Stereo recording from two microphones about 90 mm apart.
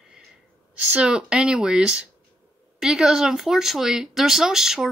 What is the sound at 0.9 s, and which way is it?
Speech, 10° right (ahead or behind).